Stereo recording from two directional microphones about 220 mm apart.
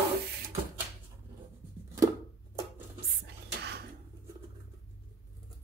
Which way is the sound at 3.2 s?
50° right (ahead or behind).